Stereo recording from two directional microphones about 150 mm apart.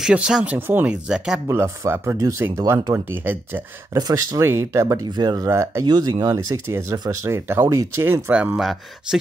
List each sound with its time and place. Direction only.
0.0 s speech: 5° right (ahead or behind)
1.5 s speech: 15° right (ahead or behind)
3.9 s speech: 25° right (ahead or behind); by 9.2 s 5° right (ahead or behind)